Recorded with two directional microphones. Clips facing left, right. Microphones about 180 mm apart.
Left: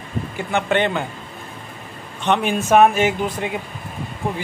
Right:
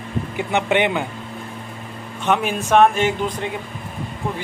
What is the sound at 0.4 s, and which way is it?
Speech, 20° right (ahead or behind).